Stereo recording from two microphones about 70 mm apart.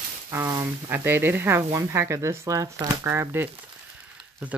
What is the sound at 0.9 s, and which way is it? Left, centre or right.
Speech, right.